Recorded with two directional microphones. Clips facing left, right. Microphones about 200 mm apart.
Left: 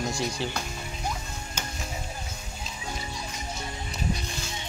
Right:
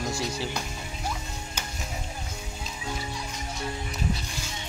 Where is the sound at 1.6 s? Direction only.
10° right (ahead or behind).